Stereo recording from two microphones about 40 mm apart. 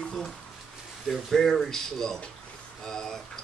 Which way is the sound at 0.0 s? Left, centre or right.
Centre.